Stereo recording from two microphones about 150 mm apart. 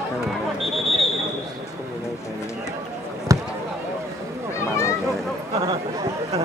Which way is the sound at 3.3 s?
20° right (ahead or behind).